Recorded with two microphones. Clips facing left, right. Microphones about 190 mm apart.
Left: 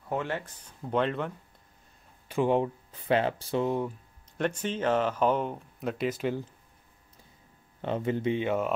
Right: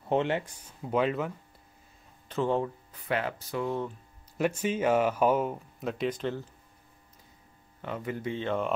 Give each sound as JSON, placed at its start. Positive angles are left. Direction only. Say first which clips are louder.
{"t": 0.1, "sound": "speech", "louder": "right 5 dB", "side_deg": -25}
{"t": 0.5, "sound": "speech", "louder": "even", "side_deg": -5}
{"t": 2.2, "sound": "speech", "louder": "left 3 dB", "side_deg": 15}
{"t": 4.4, "sound": "speech", "louder": "right 2 dB", "side_deg": -10}
{"t": 7.8, "sound": "speech", "louder": "left 6 dB", "side_deg": 25}